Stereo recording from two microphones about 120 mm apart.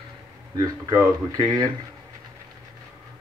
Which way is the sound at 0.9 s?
30° right (ahead or behind).